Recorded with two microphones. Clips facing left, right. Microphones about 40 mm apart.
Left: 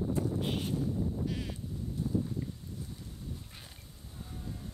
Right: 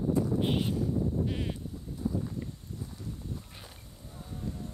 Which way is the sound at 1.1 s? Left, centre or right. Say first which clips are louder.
Right 4 dB; right.